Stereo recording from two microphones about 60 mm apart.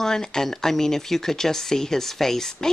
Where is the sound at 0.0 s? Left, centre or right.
Centre.